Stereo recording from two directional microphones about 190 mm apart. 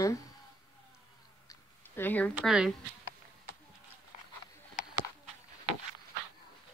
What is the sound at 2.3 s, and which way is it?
Speech, 5° right (ahead or behind).